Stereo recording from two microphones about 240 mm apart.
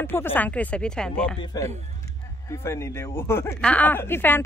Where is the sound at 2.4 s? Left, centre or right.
Centre.